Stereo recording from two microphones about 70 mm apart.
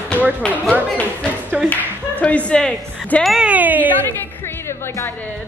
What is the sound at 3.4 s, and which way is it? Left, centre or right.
Speech, right.